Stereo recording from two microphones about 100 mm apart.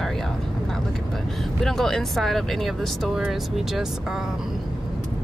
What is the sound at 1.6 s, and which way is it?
Speech, 5° left (ahead or behind).